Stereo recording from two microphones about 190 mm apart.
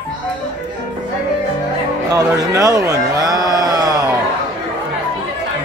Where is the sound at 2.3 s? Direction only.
20° right (ahead or behind).